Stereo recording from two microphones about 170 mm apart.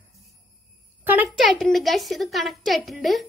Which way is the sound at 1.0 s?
10° right (ahead or behind).